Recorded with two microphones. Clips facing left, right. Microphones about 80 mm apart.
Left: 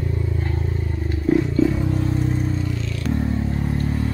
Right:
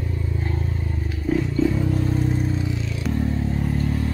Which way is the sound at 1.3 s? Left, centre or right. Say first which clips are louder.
Left 3 dB; centre.